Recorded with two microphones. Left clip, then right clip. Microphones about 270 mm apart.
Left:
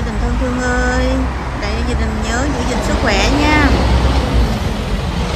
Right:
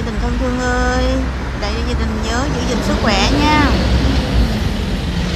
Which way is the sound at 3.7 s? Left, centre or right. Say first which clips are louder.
Left 2 dB; left.